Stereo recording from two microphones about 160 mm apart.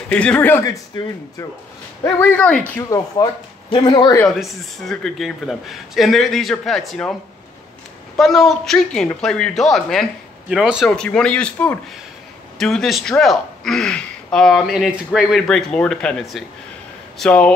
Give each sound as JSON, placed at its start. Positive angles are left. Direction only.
{"t": 0.1, "sound": "speech", "side_deg": 5}
{"t": 2.0, "sound": "speech", "side_deg": 15}
{"t": 2.8, "sound": "speech", "side_deg": 20}
{"t": 4.4, "sound": "speech", "side_deg": 0}
{"t": 8.2, "sound": "speech", "side_deg": 0}